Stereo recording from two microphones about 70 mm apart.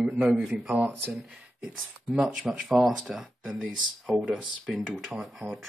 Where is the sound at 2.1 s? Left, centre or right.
Centre.